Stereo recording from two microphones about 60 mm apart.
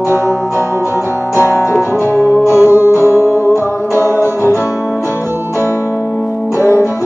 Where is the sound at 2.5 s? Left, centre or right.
Right.